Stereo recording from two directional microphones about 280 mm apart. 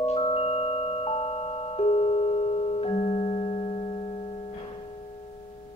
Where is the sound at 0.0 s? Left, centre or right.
Centre.